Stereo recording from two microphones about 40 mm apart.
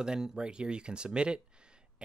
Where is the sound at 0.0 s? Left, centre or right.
Centre.